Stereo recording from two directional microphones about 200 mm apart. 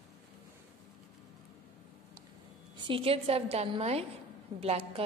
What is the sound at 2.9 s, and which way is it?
A woman's voice, 25° right (ahead or behind).